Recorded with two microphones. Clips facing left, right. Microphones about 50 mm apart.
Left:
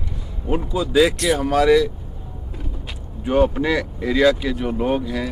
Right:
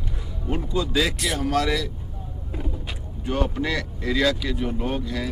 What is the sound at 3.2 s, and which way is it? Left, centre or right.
Speech, centre.